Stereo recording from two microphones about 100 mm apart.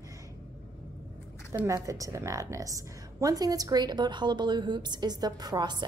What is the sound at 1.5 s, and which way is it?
A woman's voice, 30° right (ahead or behind).